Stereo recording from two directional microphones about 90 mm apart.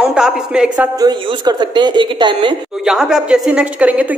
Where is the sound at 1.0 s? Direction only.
50° right (ahead or behind).